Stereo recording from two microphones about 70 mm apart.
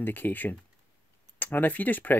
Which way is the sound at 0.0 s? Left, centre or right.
Left.